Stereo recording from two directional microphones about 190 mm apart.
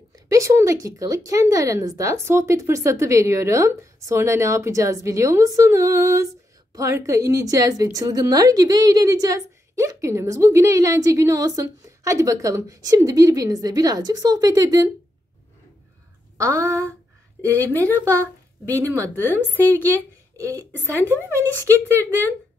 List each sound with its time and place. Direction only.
0.1 s a woman's voice: 15° right (ahead or behind)
16.3 s a sound: 15° right (ahead or behind)
17.6 s a woman's voice: 15° right (ahead or behind)
17.9 s speech: 10° left (ahead or behind)
18.2 s a woman's voice: 15° right (ahead or behind)
19.6 s speech: 10° left (ahead or behind)
20.3 s a woman's voice: 15° right (ahead or behind)
21.0 s speech: 10° left (ahead or behind)
21.5 s a woman's voice: 15° right (ahead or behind)